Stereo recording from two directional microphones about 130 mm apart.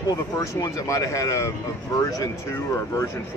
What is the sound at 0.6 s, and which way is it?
Speech, 25° left (ahead or behind).